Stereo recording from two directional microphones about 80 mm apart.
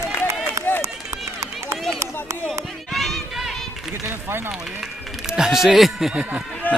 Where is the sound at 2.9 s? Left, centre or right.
Centre.